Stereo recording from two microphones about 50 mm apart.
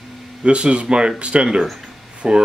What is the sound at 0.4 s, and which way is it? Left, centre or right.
Speech, right.